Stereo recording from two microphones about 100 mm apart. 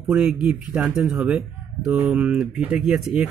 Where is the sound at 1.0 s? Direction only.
20° right (ahead or behind).